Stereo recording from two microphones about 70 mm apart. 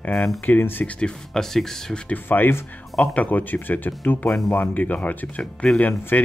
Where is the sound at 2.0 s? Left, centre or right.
Left.